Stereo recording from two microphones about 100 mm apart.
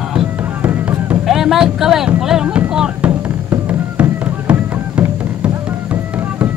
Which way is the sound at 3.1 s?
20° right (ahead or behind).